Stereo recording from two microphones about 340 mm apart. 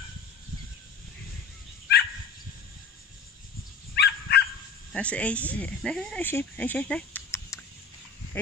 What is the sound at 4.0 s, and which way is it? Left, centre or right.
Dog, left.